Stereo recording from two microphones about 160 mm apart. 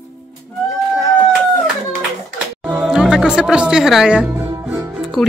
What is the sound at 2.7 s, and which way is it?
Speech, 10° right (ahead or behind).